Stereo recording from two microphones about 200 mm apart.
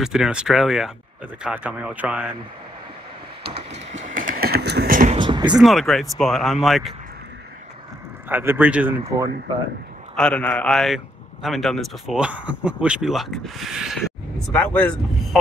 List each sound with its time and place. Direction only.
0.0 s speech: 5° right (ahead or behind)
3.5 s a sound: 35° right (ahead or behind)
5.1 s a sound: 25° right (ahead or behind)
5.5 s speech: centre (ahead or behind)
8.3 s a man's voice: 10° right (ahead or behind)
10.1 s speech: 5° left (ahead or behind)